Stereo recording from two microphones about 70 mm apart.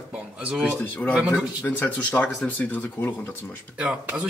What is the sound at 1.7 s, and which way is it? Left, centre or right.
Speech, left.